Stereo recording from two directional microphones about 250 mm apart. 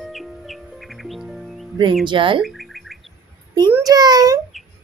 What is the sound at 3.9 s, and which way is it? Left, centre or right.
Speech, centre.